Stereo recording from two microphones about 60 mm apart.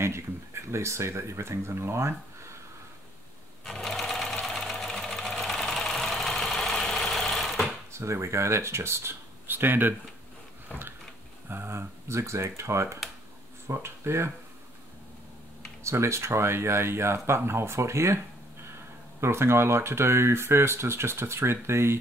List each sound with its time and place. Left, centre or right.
0.0 s speech: right
3.8 s sewing machine: centre
4.9 s engine knocking: centre
7.9 s speech: right
11.4 s speech: right
15.8 s speech: right
19.2 s speech: right